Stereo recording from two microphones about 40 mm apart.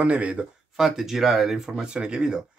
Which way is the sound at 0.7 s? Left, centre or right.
Centre.